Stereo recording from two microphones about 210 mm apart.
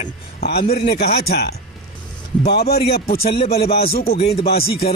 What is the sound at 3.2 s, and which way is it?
Speech, 30° left (ahead or behind).